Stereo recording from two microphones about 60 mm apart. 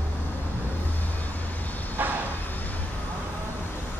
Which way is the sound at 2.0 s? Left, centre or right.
Right.